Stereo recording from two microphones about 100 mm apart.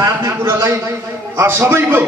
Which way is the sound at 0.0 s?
40° right (ahead or behind).